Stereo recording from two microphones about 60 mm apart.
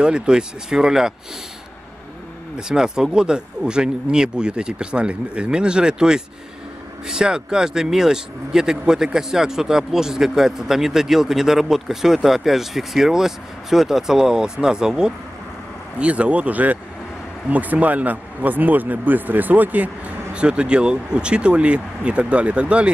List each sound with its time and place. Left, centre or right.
0.0 s speech: centre
2.5 s speech: centre
20.3 s speech: centre